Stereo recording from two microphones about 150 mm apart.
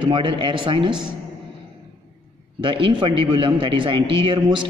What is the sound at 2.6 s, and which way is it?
A man's voice, 35° right (ahead or behind).